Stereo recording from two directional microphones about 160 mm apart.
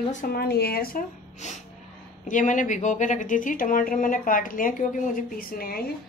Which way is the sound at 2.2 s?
50° left (ahead or behind).